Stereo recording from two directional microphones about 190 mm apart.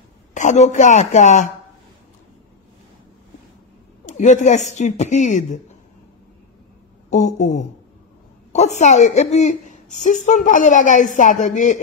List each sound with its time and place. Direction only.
0.3 s a woman's voice: 40° left (ahead or behind)
4.0 s a woman's voice: 40° left (ahead or behind)
7.1 s a woman's voice: 40° left (ahead or behind)